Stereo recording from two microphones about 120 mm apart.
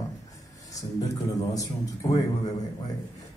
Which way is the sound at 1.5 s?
30° left (ahead or behind).